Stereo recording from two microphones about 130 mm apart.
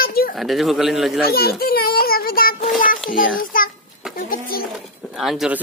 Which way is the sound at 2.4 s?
90° left.